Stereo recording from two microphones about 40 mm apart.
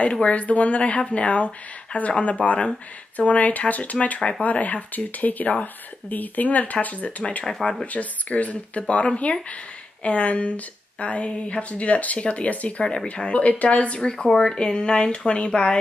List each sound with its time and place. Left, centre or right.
0.0 s speech: left
13.9 s speech: left